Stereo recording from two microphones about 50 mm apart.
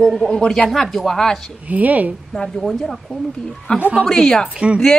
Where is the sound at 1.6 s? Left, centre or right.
Right.